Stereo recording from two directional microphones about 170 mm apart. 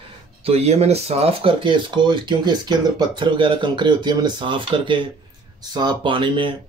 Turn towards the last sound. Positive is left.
turn(degrees=-30)  # may be behind; listen again after turning